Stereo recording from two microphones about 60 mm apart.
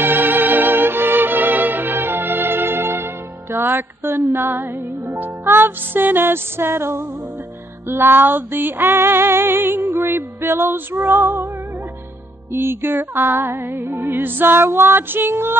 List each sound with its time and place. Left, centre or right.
0.0 s music: right
12.5 s music: right